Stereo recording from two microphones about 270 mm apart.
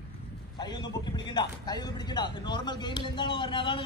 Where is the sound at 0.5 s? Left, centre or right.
Centre.